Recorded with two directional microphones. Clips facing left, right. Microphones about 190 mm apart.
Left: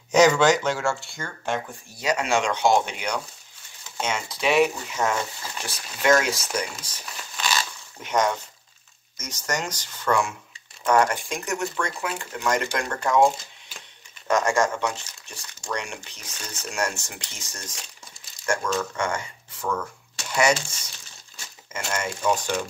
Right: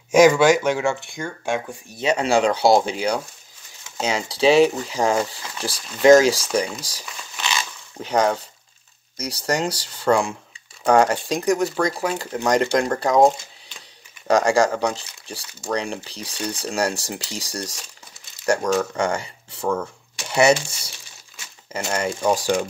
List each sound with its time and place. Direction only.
0.1 s speech: 10° right (ahead or behind)
2.0 s speech: 35° right (ahead or behind)